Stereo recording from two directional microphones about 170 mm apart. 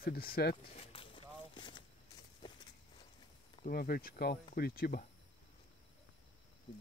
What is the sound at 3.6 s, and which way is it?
Speech, 60° left (ahead or behind).